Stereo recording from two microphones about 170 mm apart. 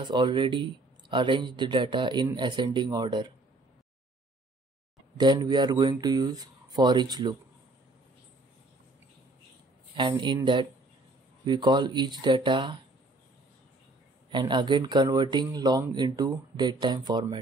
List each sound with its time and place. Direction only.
0.0 s speech: 25° right (ahead or behind)
5.1 s speech: 25° right (ahead or behind)
9.9 s speech: 25° right (ahead or behind)
14.3 s speech: 25° right (ahead or behind)